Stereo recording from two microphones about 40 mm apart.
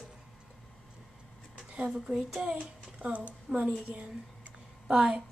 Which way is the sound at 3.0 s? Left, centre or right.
Right.